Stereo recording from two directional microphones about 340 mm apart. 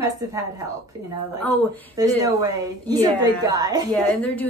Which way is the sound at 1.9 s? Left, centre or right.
Centre.